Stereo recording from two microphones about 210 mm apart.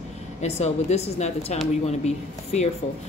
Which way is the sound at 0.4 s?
30° left (ahead or behind).